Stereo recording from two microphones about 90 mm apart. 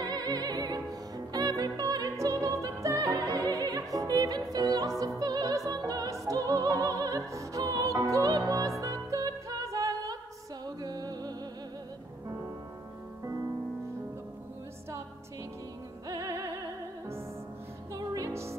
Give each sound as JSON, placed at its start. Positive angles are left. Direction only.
{"t": 0.0, "sound": "music", "side_deg": -45}
{"t": 5.7, "sound": "opera", "side_deg": -45}
{"t": 10.8, "sound": "music", "side_deg": -45}
{"t": 16.1, "sound": "music", "side_deg": -40}
{"t": 17.9, "sound": "music", "side_deg": -40}